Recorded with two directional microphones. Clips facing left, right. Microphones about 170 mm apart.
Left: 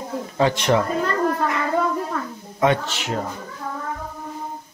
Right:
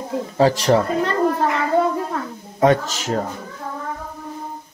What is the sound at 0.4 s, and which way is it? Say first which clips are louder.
Speech: right 3 dB; 35° right (ahead or behind).